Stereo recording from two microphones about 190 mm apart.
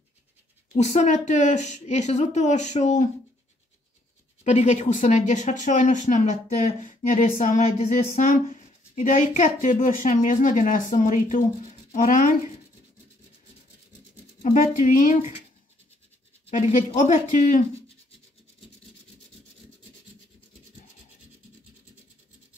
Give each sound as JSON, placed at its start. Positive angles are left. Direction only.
{"t": 0.7, "sound": "speech", "side_deg": 40}
{"t": 4.5, "sound": "speech", "side_deg": 35}
{"t": 14.4, "sound": "speech", "side_deg": 40}
{"t": 16.4, "sound": "speech", "side_deg": 35}